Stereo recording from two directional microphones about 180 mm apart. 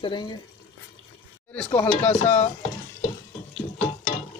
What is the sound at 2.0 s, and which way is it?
Speech, 10° left (ahead or behind).